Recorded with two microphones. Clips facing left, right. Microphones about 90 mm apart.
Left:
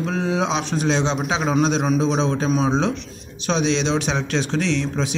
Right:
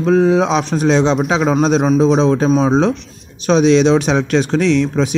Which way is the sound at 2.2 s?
40° right (ahead or behind).